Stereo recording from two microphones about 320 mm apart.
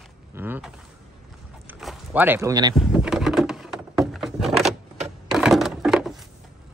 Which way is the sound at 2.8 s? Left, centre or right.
Centre.